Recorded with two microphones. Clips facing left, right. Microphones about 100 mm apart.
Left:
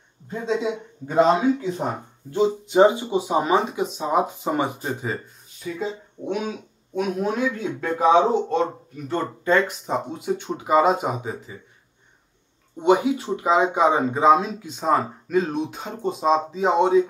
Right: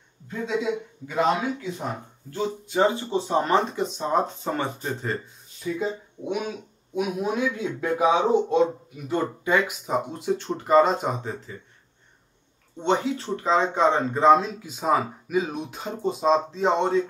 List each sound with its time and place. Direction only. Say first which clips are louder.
0.3 s speech: left 2 dB; 30° left (ahead or behind); by 7.7 s centre (ahead or behind)
7.8 s speech: left 4 dB; 10° right (ahead or behind)
9.8 s speech: even; centre (ahead or behind)
12.7 s speech: left 5 dB; 10° left (ahead or behind)